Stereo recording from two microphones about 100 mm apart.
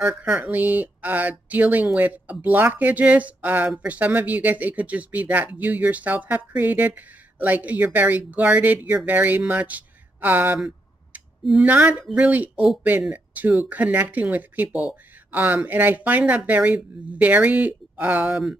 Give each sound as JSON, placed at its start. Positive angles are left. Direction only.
{"t": 0.0, "sound": "speech", "side_deg": -10}
{"t": 11.6, "sound": "speech", "side_deg": -15}
{"t": 18.2, "sound": "speech", "side_deg": -5}